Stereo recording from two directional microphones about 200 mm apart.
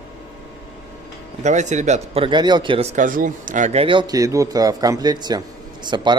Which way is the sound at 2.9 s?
40° right (ahead or behind).